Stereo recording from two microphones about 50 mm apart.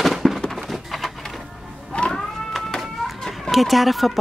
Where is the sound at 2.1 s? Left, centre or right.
Centre.